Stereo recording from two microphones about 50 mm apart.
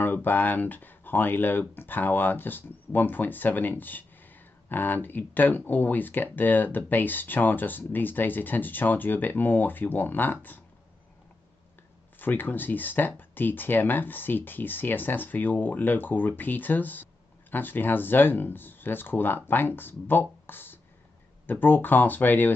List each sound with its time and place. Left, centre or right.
0.0 s speech: left
12.2 s speech: left